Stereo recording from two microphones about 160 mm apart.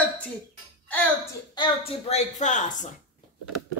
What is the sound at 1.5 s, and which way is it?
A woman's voice, 35° left (ahead or behind).